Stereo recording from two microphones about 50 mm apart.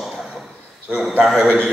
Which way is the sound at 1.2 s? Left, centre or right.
Centre.